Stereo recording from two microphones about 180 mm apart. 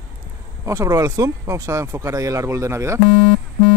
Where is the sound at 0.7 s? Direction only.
20° right (ahead or behind).